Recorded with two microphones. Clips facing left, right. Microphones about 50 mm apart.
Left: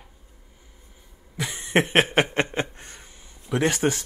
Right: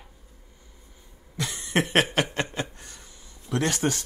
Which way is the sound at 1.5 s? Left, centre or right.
Left.